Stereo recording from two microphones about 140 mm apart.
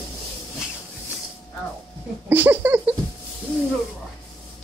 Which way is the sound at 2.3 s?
15° right (ahead or behind).